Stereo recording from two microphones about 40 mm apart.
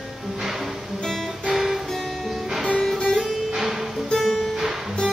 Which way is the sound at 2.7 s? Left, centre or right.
Centre.